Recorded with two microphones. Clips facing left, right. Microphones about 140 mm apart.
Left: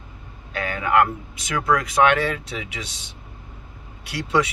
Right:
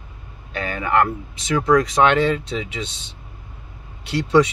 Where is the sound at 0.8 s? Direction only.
10° left (ahead or behind).